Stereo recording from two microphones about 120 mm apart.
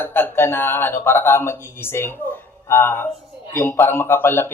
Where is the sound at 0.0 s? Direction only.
15° left (ahead or behind).